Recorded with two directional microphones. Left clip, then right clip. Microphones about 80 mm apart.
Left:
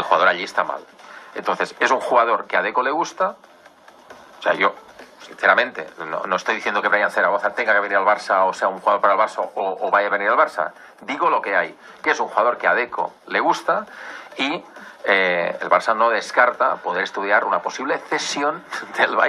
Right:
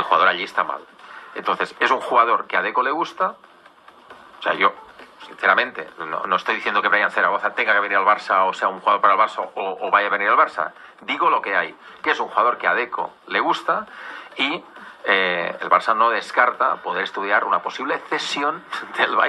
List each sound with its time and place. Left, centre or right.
0.0 s speech: left
4.4 s speech: left